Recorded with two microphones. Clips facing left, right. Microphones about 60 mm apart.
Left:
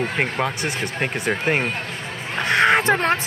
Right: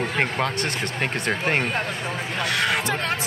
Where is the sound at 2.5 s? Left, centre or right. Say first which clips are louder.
Left 8 dB; left.